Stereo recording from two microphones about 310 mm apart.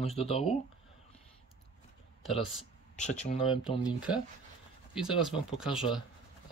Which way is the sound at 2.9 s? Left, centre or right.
Left.